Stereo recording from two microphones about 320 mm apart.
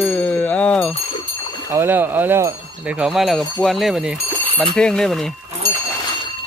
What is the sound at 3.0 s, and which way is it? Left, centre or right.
Speech, centre.